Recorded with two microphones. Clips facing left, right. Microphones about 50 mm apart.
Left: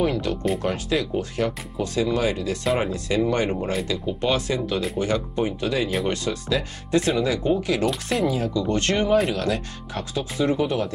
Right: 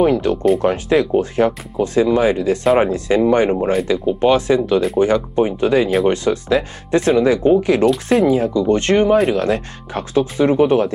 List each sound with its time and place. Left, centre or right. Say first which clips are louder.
0.0 s speech: right 9 dB; right